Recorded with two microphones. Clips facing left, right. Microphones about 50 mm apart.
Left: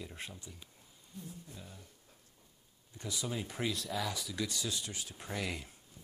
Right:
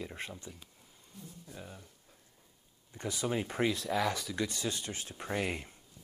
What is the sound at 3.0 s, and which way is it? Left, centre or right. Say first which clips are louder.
Speech: right 5 dB; right.